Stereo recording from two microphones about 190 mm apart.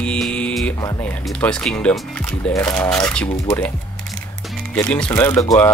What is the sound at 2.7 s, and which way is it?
Speech, 5° left (ahead or behind).